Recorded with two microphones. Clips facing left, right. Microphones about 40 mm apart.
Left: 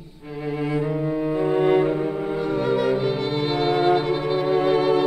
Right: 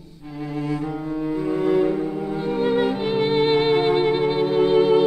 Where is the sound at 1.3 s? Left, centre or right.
Left.